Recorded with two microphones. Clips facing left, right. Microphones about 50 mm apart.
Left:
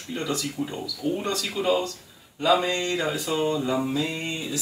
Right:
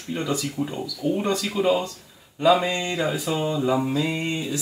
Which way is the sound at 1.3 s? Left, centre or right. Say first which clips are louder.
Right 4 dB; right.